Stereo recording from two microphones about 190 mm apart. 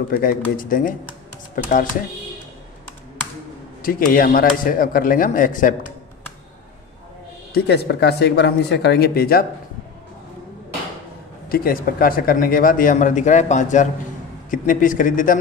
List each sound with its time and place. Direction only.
0.1 s speech: 50° left (ahead or behind)
3.8 s speech: 50° left (ahead or behind)
7.5 s speech: 60° left (ahead or behind)
11.4 s speech: 50° left (ahead or behind)